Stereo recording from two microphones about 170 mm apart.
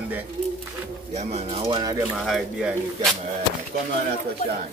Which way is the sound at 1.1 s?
40° right (ahead or behind).